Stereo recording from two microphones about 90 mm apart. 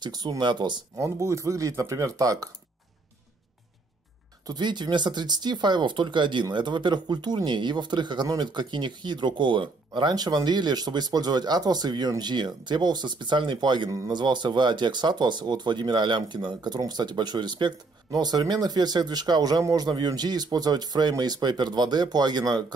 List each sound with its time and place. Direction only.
0.0 s speech: 50° right (ahead or behind)
0.9 s speech: 35° right (ahead or behind)
4.5 s speech: 55° right (ahead or behind)
13.8 s speech: 40° right (ahead or behind)
14.1 s speech: 55° right (ahead or behind)